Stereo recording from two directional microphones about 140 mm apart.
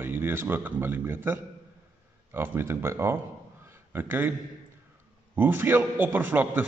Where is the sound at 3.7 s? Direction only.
15° right (ahead or behind).